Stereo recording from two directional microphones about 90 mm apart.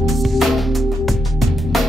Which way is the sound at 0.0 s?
Centre (ahead or behind).